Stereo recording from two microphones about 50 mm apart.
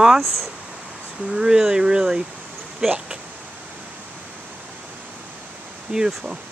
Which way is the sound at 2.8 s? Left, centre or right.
Centre.